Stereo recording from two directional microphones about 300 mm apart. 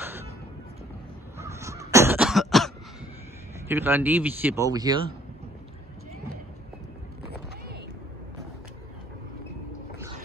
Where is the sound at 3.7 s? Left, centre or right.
Centre.